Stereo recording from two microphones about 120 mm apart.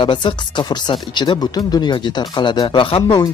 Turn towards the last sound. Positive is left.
turn(degrees=45)  # may be behind; listen again after turning